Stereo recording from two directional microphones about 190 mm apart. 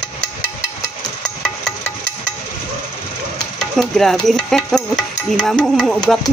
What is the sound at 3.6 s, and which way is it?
Stir, centre (ahead or behind).